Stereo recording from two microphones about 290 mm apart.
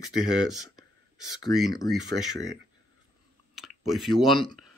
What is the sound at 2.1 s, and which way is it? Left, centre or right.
Speech, right.